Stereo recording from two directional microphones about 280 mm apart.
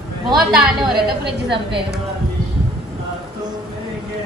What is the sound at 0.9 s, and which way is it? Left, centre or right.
Speech, right.